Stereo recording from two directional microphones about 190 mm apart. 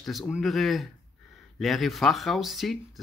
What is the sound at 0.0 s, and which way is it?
Speech, centre (ahead or behind).